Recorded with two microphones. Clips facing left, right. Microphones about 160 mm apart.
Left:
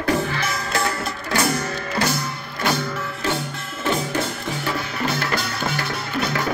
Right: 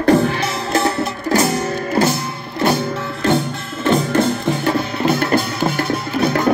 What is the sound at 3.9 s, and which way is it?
Music, 60° right (ahead or behind).